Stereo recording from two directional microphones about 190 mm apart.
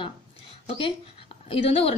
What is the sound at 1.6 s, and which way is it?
Speech, 30° left (ahead or behind).